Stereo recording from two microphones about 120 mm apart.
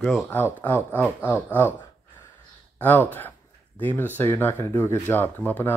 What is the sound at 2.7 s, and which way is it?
Speech, 15° left (ahead or behind).